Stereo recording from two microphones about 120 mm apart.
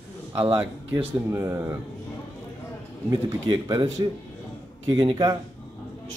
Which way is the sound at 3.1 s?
35° right (ahead or behind).